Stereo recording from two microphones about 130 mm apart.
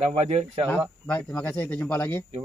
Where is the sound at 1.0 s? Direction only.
10° left (ahead or behind).